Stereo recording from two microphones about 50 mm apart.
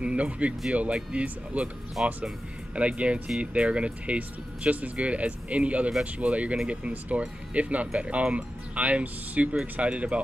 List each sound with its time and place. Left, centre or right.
0.0 s speech: right
2.0 s speech: centre
2.7 s speech: right